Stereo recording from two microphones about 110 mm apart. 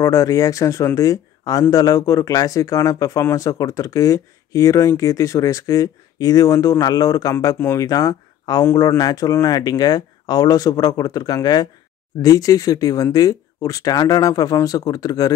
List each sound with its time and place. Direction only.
0.0 s speech: 30° left (ahead or behind)